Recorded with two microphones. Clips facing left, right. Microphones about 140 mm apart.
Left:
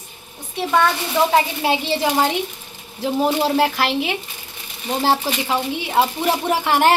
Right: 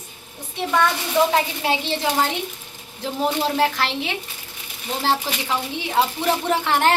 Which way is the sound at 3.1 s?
10° left (ahead or behind).